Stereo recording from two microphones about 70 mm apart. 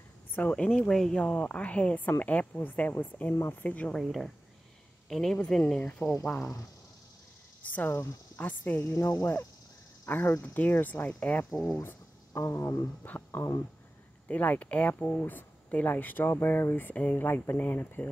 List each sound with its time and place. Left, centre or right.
0.3 s speech: left
3.9 s speech: centre
7.6 s speech: left
8.8 s speech: left
10.0 s speech: left
12.5 s speech: left
13.0 s speech: left